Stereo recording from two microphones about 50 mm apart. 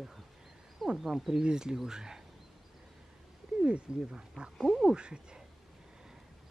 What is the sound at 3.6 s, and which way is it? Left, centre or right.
Speech, centre.